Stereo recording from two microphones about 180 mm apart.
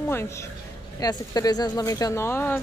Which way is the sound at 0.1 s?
15° left (ahead or behind).